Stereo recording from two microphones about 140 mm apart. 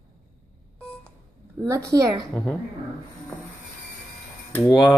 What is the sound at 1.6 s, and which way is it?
Speech, 20° right (ahead or behind).